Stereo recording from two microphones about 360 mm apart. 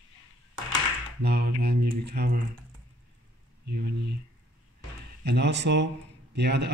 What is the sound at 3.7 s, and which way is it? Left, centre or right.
Speech, right.